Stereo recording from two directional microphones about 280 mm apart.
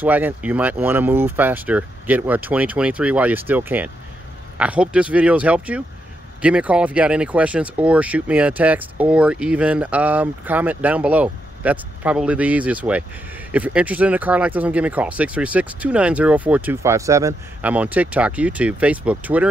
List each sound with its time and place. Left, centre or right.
0.0 s speech: centre